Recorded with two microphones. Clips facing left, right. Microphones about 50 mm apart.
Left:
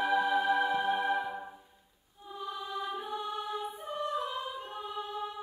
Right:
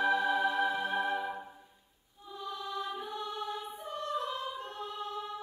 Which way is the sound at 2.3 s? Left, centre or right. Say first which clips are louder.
Left 1 dB; centre.